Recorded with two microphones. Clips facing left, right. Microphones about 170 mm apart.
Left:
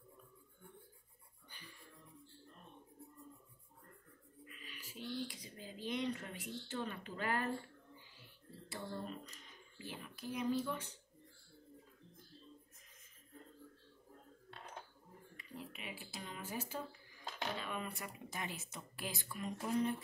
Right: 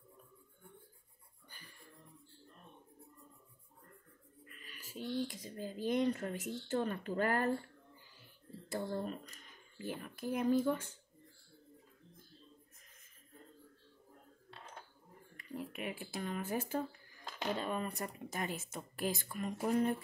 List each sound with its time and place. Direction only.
1.5 s a sound: 45° right (ahead or behind)
4.5 s speech: 45° right (ahead or behind)
8.6 s speech: 45° right (ahead or behind)
15.3 s speech: 50° right (ahead or behind)
17.6 s speech: 40° right (ahead or behind)